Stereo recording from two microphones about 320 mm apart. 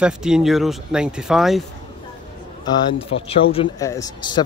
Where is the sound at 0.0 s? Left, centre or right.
Centre.